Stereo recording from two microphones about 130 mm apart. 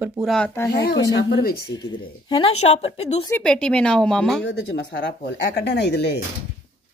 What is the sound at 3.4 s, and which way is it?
Speech, 5° left (ahead or behind).